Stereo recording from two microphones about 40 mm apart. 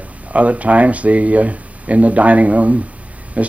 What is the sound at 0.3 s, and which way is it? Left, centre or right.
Speech, right.